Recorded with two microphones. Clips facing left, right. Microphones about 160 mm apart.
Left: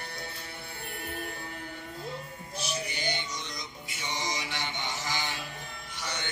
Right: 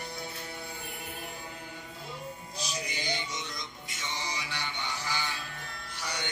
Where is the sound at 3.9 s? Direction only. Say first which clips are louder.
Left 3 dB; 15° left (ahead or behind).